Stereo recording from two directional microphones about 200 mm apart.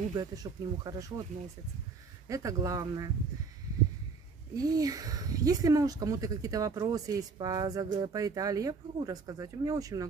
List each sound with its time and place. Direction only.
0.1 s speech: 20° right (ahead or behind)
2.2 s speech: 15° right (ahead or behind)
4.6 s speech: 20° right (ahead or behind)